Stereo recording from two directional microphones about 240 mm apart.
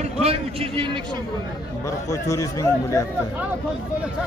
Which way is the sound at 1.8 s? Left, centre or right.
Centre.